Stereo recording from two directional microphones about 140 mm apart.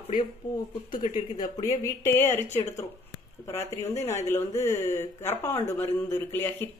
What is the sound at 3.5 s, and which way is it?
A woman's voice, 20° left (ahead or behind).